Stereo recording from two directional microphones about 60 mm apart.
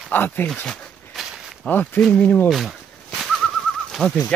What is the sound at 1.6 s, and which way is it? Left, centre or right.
Speech, left.